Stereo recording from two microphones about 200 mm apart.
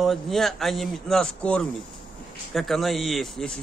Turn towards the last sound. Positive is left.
turn(degrees=0)  # may be behind; listen again after turning